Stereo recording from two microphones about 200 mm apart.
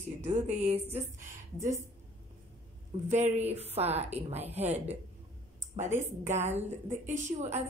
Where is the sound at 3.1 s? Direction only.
35° right (ahead or behind).